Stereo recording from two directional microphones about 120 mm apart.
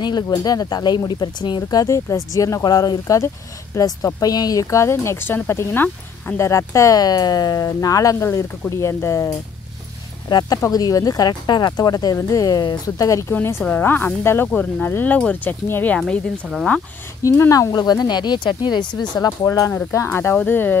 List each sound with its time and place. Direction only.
0.0 s speech: 35° left (ahead or behind)
10.3 s speech: 30° left (ahead or behind); by 16.0 s 15° left (ahead or behind)
16.0 s speech: centre (ahead or behind)
17.2 s speech: 25° left (ahead or behind)
20.1 s speech: 15° left (ahead or behind)